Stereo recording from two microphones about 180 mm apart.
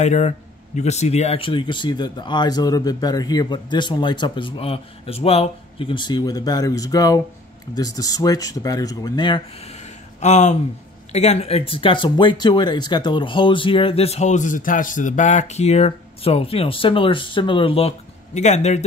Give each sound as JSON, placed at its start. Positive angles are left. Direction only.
{"t": 0.0, "sound": "speech", "side_deg": 40}
{"t": 10.2, "sound": "speech", "side_deg": 40}